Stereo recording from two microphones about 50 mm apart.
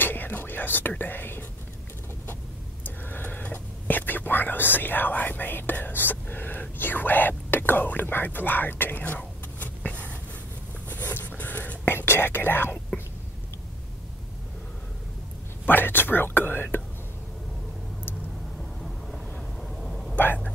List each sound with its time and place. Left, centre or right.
0.0 s speech: left
2.8 s whispering: left
10.9 s writing: left
11.8 s speech: left
15.6 s speech: left
18.6 s vehicle: centre
19.7 s a sound: centre